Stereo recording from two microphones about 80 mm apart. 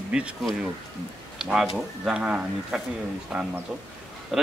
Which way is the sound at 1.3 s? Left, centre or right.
Centre.